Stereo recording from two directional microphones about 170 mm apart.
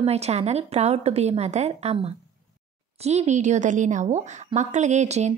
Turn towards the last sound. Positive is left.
turn(degrees=-40)  # may be behind; listen again after turning